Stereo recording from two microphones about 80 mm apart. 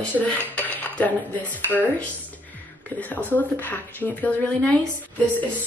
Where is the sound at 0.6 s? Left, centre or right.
Centre.